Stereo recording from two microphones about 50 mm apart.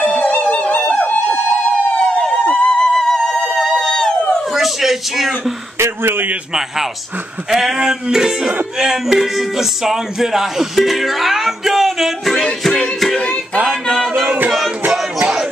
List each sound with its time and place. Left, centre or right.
0.2 s music: left
0.9 s a sound: left
2.4 s music: left
2.9 s music: centre
4.6 s a sound: centre
5.8 s a man's voice: right
7.5 s speech: centre
8.9 s music: centre